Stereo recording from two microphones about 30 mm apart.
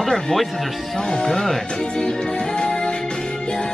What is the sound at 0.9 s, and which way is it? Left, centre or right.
Music, left.